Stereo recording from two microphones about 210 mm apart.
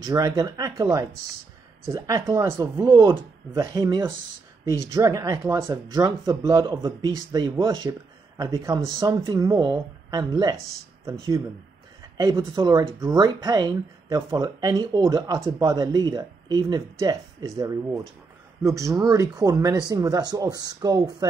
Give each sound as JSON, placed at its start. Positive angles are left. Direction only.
{"t": 0.0, "sound": "speech", "side_deg": -15}
{"t": 12.2, "sound": "speech", "side_deg": -20}